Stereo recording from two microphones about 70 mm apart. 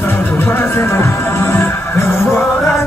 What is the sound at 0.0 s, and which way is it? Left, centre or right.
Music, left.